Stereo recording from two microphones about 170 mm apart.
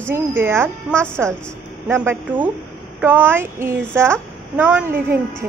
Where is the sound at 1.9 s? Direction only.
10° right (ahead or behind).